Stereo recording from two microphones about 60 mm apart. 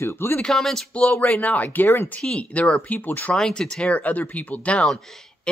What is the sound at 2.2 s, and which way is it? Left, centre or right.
Speech, centre.